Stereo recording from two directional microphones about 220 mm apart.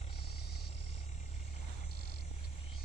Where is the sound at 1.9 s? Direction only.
45° left (ahead or behind).